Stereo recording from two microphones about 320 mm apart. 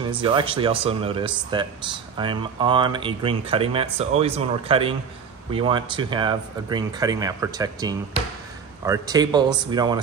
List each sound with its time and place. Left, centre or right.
0.0 s speech: centre